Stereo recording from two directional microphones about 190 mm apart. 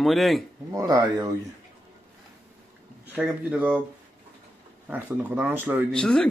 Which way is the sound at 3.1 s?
5° right (ahead or behind).